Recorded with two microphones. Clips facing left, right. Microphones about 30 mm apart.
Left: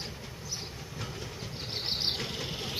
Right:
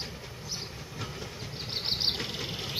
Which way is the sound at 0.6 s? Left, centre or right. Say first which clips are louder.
Right 1 dB; centre.